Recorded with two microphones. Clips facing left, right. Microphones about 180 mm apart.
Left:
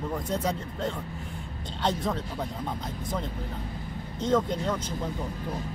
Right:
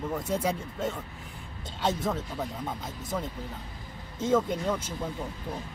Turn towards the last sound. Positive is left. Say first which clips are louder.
# even
turn(degrees=-10)  # may be behind; listen again after turning